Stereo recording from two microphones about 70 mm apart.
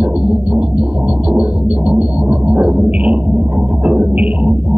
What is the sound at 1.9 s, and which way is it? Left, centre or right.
Music, centre.